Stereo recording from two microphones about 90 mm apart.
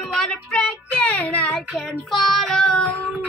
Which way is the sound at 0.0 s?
10° left (ahead or behind).